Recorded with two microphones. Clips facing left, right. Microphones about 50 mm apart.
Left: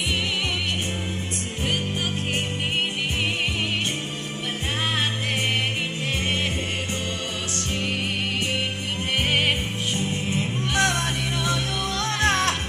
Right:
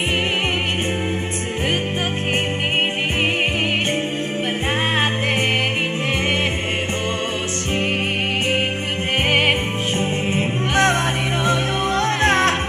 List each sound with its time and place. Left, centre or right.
9.3 s music: right